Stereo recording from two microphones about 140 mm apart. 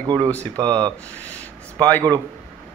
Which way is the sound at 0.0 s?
25° right (ahead or behind).